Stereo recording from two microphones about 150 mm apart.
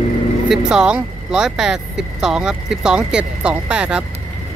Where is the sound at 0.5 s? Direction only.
5° right (ahead or behind).